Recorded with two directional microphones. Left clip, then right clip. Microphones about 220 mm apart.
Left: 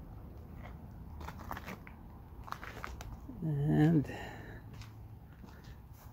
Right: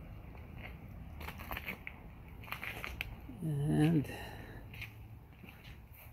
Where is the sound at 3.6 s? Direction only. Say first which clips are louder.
Left 2 dB; 15° left (ahead or behind).